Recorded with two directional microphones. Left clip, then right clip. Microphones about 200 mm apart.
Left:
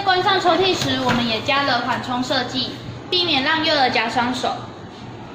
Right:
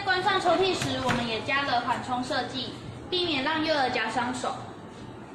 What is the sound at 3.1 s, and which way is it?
A woman's voice, 40° left (ahead or behind).